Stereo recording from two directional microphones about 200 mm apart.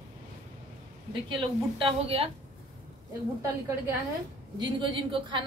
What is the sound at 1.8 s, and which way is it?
Speech, 30° right (ahead or behind).